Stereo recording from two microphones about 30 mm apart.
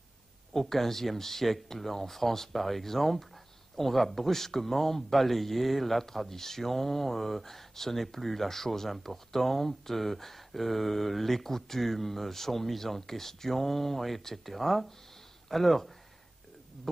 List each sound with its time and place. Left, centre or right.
0.5 s speech: centre